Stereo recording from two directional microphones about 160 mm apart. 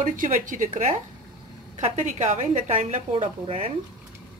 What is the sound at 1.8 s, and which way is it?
A woman's voice, 45° right (ahead or behind).